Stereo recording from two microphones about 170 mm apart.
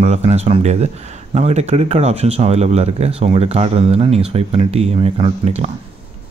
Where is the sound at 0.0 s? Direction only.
40° right (ahead or behind).